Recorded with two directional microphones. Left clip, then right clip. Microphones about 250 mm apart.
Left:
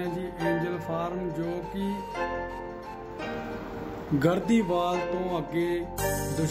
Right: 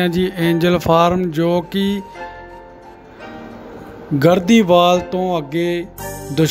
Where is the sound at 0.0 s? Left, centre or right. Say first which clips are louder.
Right 12 dB; right.